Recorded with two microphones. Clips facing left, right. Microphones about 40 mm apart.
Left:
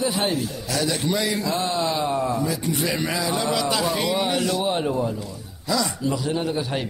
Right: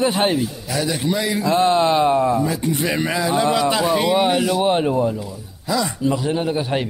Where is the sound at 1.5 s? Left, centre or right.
Right.